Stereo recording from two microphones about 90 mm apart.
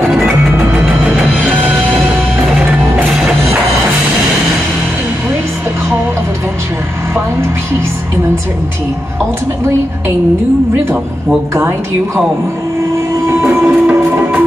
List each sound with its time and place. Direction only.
1.6 s music: 15° right (ahead or behind)
3.1 s music: centre (ahead or behind)
12.9 s train: 30° right (ahead or behind)
13.8 s music: 15° right (ahead or behind)